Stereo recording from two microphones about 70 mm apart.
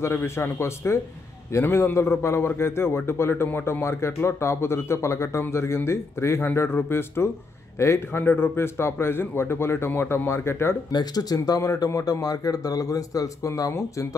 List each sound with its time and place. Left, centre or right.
0.0 s a man's voice: left
3.4 s a man's voice: left
8.2 s a man's voice: left
10.9 s speech: left